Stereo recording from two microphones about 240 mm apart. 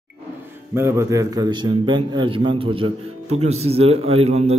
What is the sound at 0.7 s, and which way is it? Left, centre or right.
A man's voice, centre.